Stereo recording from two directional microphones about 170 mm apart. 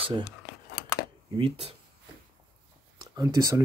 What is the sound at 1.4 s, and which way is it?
Speech, 35° right (ahead or behind).